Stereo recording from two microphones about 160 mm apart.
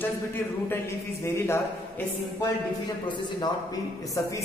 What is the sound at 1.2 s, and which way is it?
Speech, 15° left (ahead or behind).